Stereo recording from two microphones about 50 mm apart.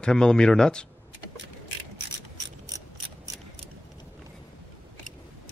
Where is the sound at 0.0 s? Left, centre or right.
Centre.